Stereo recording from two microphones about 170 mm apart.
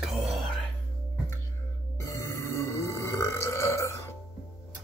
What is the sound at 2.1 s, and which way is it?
Burping, 15° left (ahead or behind).